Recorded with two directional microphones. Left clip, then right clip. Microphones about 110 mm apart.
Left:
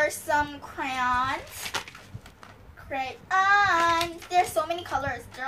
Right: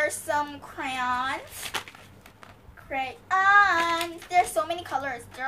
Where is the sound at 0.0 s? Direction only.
15° right (ahead or behind).